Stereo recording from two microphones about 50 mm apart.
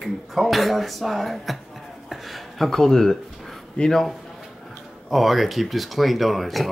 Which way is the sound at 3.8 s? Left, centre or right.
Left.